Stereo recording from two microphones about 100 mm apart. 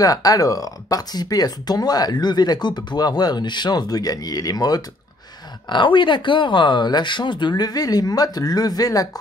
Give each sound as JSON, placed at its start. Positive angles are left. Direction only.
{"t": 0.0, "sound": "speech", "side_deg": 35}
{"t": 5.7, "sound": "speech", "side_deg": 55}